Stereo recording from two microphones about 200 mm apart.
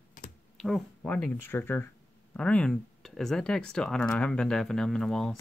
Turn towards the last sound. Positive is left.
turn(degrees=0)  # may be behind; listen again after turning